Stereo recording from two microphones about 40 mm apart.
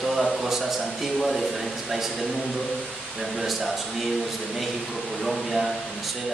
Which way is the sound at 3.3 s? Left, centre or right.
Centre.